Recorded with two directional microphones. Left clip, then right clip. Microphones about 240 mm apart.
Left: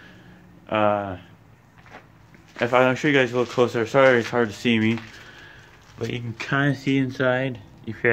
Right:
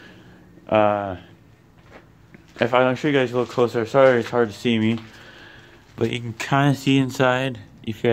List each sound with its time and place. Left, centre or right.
0.7 s speech: right
2.8 s speech: centre
5.2 s a sound: right
6.0 s speech: right